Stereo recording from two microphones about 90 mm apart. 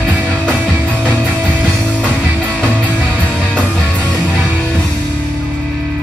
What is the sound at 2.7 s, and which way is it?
Music, 15° right (ahead or behind).